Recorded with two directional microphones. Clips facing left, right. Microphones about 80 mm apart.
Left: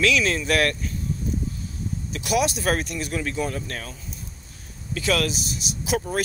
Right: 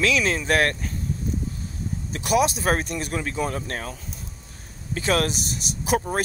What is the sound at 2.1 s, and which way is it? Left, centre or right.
Speech, right.